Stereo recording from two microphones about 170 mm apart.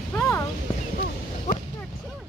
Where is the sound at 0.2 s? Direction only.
15° left (ahead or behind).